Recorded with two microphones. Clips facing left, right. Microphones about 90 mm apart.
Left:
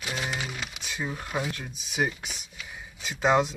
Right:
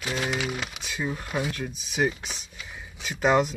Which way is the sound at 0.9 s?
20° left (ahead or behind).